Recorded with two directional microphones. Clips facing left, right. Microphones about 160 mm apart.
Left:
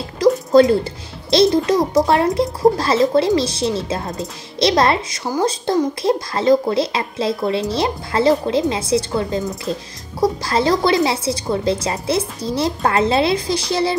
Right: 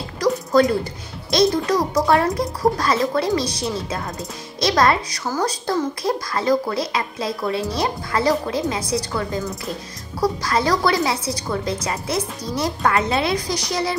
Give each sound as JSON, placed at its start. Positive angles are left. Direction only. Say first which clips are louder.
{"t": 0.5, "sound": "speech", "louder": "left 4 dB", "side_deg": 25}